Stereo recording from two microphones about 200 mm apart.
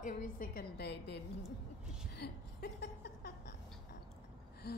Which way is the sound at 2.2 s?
55° left (ahead or behind).